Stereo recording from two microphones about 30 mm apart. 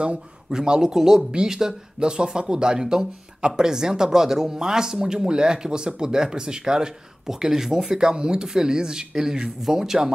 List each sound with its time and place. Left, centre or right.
0.5 s speech: right
0.9 s speech: centre
2.0 s speech: right; by 8.0 s centre
8.0 s speech: right